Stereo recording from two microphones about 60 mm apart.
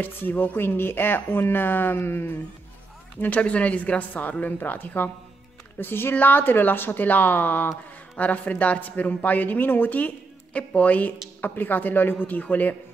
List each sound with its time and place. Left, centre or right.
0.0 s speech: left
3.2 s speech: left